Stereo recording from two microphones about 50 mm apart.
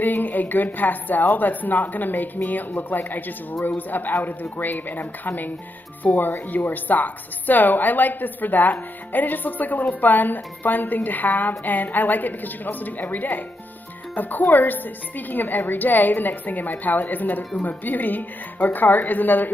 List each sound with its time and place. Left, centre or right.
0.0 s speech: left